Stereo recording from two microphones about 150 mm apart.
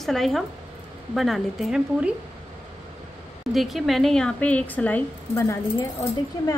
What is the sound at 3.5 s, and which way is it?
Speech, centre (ahead or behind).